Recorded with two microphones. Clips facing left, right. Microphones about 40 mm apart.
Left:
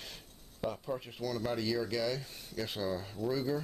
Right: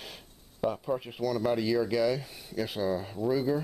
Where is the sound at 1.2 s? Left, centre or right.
Centre.